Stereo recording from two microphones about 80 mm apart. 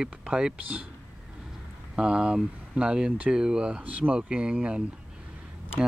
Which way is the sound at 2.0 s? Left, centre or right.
Centre.